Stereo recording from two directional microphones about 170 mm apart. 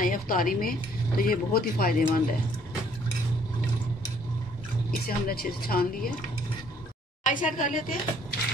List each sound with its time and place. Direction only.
0.0 s speech: 55° left (ahead or behind)
5.0 s speech: 65° left (ahead or behind)
7.2 s speech: 50° left (ahead or behind)